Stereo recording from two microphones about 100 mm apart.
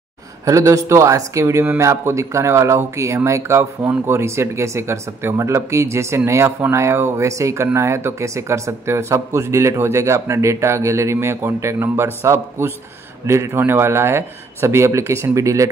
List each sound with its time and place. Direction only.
0.5 s speech: 30° right (ahead or behind)